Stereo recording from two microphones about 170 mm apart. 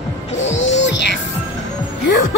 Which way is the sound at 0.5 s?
45° left (ahead or behind).